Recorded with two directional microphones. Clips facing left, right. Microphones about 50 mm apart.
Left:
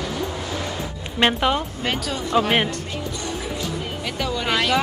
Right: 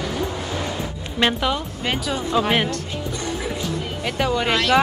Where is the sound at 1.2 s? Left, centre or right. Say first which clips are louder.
Left 1 dB; left.